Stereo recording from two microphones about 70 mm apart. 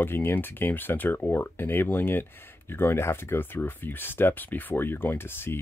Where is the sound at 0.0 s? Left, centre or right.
Left.